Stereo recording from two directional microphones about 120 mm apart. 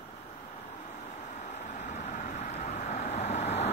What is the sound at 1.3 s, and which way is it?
Vehicle, 85° left.